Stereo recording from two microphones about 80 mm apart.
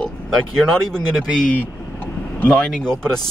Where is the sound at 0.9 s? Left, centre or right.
Centre.